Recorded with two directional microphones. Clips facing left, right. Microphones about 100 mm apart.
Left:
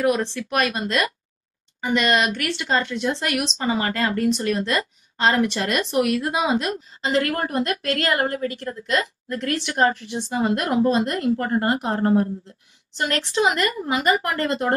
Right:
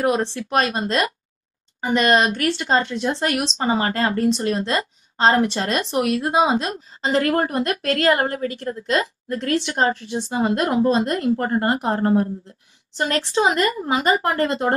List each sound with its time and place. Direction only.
0.0 s speech: 30° right (ahead or behind)